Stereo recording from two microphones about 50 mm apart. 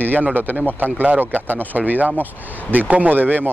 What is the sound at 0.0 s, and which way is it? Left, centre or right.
Speech, right.